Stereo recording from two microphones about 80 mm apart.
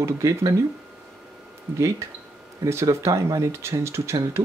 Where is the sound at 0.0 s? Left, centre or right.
Right.